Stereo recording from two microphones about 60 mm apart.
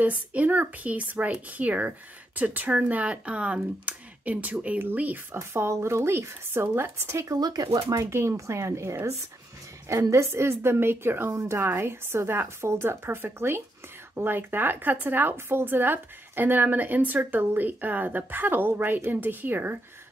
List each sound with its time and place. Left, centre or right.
0.0 s speech: right
5.3 s speech: right
7.3 s speech: right
7.9 s speech: right
9.8 s a woman's voice: right